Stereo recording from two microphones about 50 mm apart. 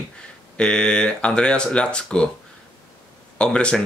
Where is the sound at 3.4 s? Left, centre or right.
Centre.